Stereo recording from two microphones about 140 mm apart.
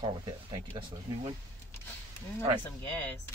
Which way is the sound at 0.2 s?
35° right (ahead or behind).